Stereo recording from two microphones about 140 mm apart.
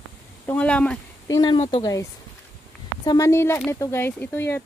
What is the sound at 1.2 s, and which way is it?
Speech, 30° left (ahead or behind).